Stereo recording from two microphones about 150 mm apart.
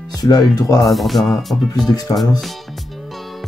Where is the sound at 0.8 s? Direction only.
Centre (ahead or behind).